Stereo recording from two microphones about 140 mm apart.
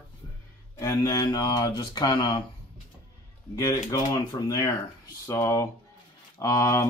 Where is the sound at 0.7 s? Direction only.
25° left (ahead or behind).